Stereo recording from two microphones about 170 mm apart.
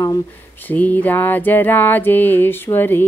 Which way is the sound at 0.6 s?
10° left (ahead or behind).